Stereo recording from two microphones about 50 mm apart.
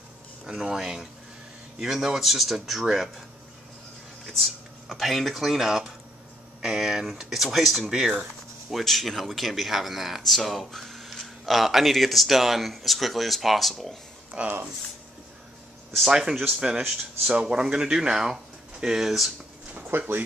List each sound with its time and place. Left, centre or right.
0.5 s speech: centre
4.3 s speech: centre
14.3 s speech: centre
16.1 s speech: centre
19.7 s speech: right